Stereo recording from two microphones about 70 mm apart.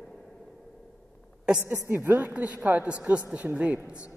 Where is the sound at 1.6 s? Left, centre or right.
Right.